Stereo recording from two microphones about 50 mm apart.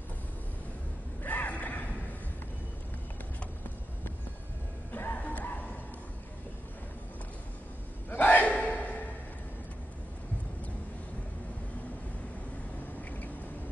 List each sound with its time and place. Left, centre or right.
1.2 s gasp: left
4.9 s music: left
8.1 s gasp: left